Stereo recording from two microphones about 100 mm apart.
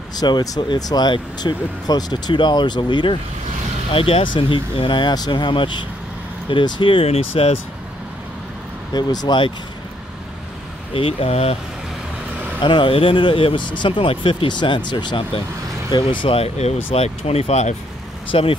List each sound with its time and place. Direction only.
0.1 s speech: 45° left (ahead or behind)
3.9 s speech: 65° left (ahead or behind); by 7.5 s 80° left
8.9 s speech: 45° left (ahead or behind)
10.9 s speech: 75° left (ahead or behind)
12.5 s speech: 55° left (ahead or behind)
16.3 s speech: 90° left
18.3 s speech: 65° left (ahead or behind)